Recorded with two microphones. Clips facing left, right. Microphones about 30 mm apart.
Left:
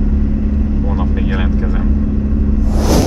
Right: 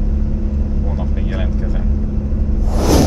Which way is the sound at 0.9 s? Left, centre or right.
Left.